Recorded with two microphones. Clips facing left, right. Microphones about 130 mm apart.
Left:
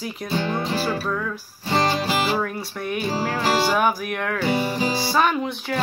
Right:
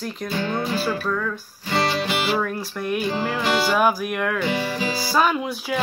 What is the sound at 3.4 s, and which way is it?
Music, 35° left (ahead or behind).